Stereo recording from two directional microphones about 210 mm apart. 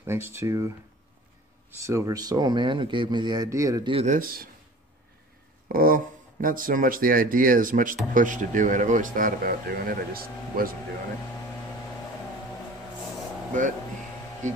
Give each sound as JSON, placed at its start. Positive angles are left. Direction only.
{"t": 0.0, "sound": "speech", "side_deg": -10}
{"t": 1.8, "sound": "speech", "side_deg": -15}
{"t": 4.0, "sound": "speech", "side_deg": -40}
{"t": 5.7, "sound": "speech", "side_deg": -45}